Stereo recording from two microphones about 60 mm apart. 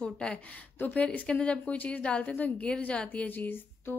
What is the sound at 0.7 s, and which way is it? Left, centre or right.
Speech, left.